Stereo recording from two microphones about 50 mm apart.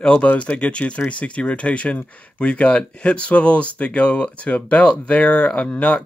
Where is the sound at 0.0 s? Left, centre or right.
Left.